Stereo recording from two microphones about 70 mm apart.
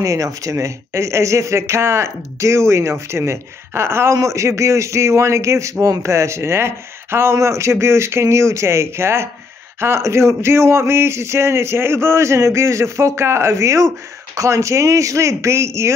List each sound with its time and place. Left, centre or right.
0.0 s speech: right